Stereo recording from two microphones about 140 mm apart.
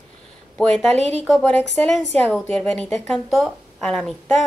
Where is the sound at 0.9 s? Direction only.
55° right (ahead or behind).